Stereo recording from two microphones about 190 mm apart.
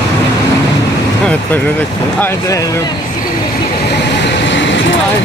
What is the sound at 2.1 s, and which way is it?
Speech, 15° left (ahead or behind).